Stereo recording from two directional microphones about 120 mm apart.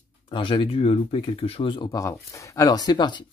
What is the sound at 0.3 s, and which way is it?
Speech, 45° left (ahead or behind).